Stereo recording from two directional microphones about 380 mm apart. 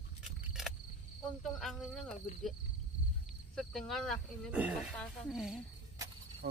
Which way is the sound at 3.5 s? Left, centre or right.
Centre.